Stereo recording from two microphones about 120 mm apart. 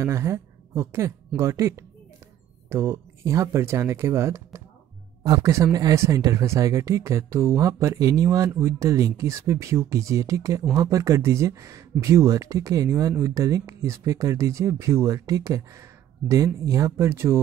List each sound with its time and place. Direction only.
0.0 s speech: 25° right (ahead or behind)